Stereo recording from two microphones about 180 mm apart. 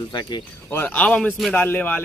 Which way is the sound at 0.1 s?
25° left (ahead or behind).